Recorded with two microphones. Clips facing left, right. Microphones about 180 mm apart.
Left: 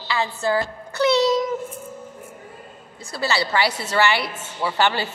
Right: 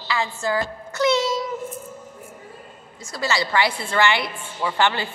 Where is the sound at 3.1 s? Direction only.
30° left (ahead or behind).